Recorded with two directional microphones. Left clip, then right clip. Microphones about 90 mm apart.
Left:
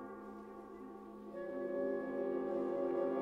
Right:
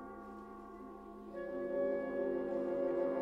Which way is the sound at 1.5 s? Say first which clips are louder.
Right 3 dB; 5° left (ahead or behind).